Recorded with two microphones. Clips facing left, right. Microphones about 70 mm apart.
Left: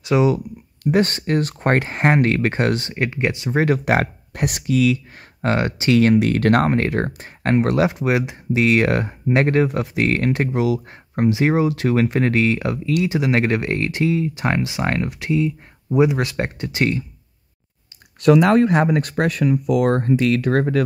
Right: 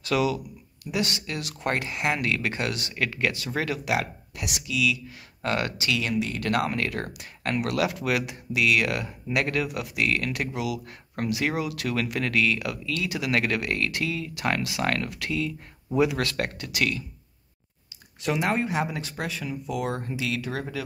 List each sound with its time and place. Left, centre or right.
0.0 s speech: left
0.8 s speech: left
3.6 s speech: left
5.9 s speech: left
18.2 s speech: left